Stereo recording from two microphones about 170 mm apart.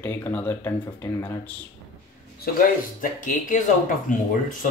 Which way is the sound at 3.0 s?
50° left (ahead or behind).